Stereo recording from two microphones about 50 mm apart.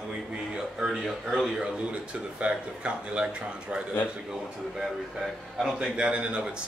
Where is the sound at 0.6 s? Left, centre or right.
Centre.